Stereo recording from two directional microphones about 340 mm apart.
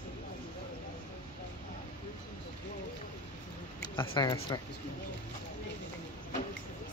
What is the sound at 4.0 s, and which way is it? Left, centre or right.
Speech, centre.